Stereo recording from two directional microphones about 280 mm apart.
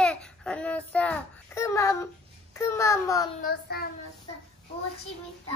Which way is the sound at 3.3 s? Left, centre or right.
Left.